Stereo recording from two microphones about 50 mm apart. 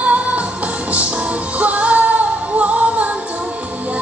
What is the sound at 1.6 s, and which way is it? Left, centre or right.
Music, right.